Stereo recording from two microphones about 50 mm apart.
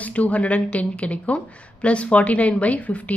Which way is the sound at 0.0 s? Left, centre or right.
Left.